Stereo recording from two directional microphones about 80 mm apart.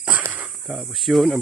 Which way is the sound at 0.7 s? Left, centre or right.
Centre.